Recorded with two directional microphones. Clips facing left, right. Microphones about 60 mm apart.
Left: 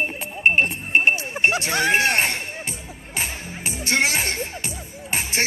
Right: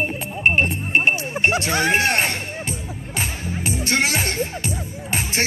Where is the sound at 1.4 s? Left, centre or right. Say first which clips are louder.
Right 1 dB; centre.